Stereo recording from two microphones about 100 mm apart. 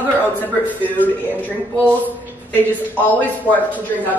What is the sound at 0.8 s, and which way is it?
A woman's voice, 15° left (ahead or behind).